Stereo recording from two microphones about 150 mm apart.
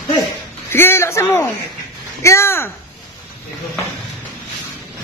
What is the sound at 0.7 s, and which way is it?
A man's voice, 15° left (ahead or behind).